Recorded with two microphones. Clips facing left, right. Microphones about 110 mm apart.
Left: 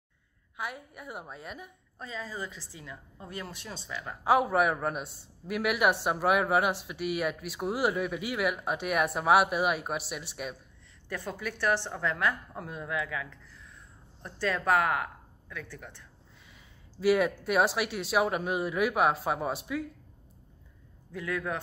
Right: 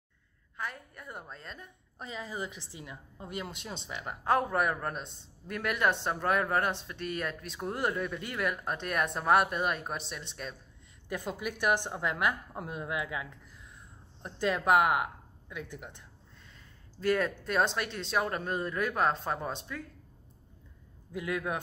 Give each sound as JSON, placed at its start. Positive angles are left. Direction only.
{"t": 0.6, "sound": "a man's voice", "side_deg": 10}
{"t": 2.0, "sound": "a woman's voice", "side_deg": -20}
{"t": 4.2, "sound": "a man's voice", "side_deg": 10}
{"t": 11.1, "sound": "a woman's voice", "side_deg": -15}
{"t": 17.0, "sound": "a man's voice", "side_deg": 10}
{"t": 21.1, "sound": "a woman's voice", "side_deg": -15}